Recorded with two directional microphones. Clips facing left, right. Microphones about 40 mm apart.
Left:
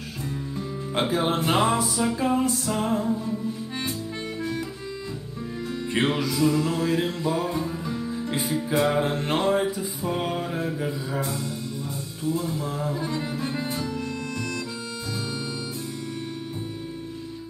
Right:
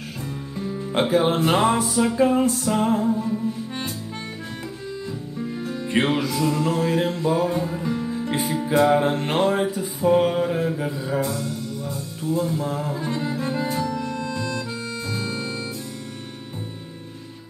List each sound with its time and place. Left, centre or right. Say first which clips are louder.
0.2 s music: even; right
2.7 s mantra: right 4 dB; right
5.6 s mantra: right 2 dB; right
7.7 s music: right 4 dB; right
8.9 s mantra: right 4 dB; right
12.3 s mantra: right 4 dB; right
13.6 s music: right 5 dB; right
13.9 s music: right 3 dB; right